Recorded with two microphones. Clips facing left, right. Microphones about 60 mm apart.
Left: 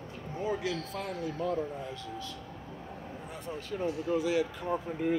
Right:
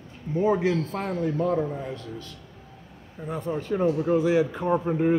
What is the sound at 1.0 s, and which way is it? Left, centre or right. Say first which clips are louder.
Speech: right 8 dB; right.